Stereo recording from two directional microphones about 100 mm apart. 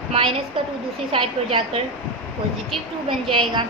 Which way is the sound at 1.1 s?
65° right (ahead or behind).